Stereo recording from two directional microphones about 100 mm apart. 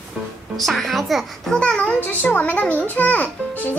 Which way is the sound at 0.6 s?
Centre (ahead or behind).